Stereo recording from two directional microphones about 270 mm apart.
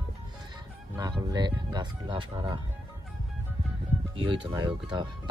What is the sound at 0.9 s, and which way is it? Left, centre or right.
Speech, centre.